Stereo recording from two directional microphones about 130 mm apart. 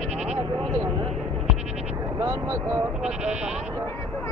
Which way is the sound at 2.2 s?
25° right (ahead or behind).